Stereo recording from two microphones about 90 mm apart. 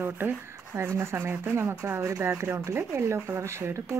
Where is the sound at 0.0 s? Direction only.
25° right (ahead or behind).